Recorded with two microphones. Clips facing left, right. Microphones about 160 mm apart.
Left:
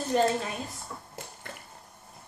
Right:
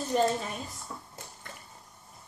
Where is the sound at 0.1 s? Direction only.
60° left (ahead or behind).